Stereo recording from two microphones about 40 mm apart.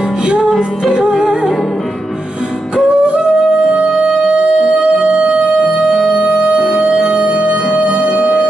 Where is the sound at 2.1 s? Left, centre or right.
Centre.